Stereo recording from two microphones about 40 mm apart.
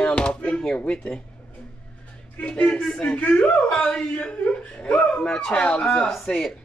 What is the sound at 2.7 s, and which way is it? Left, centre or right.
Speech, left.